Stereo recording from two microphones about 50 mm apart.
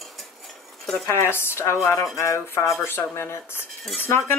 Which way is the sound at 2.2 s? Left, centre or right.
Left.